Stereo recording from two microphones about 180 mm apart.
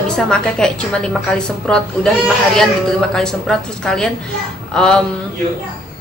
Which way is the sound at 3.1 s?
5° left (ahead or behind).